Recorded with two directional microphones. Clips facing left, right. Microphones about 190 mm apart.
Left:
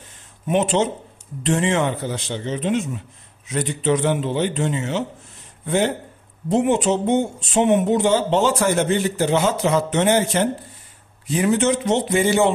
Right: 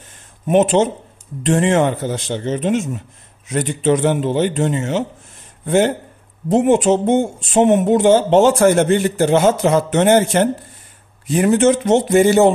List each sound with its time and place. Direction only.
0.5 s a man's voice: 50° right (ahead or behind)